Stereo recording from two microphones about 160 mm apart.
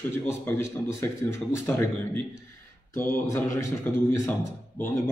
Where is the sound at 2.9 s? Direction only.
15° left (ahead or behind).